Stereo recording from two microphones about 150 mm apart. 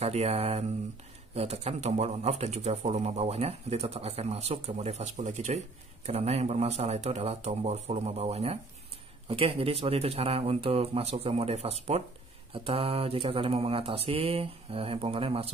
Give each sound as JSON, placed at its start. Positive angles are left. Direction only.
{"t": 0.0, "sound": "speech", "side_deg": -45}
{"t": 9.3, "sound": "mantra", "side_deg": -40}